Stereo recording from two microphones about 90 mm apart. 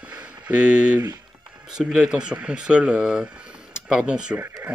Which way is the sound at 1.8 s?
5° right (ahead or behind).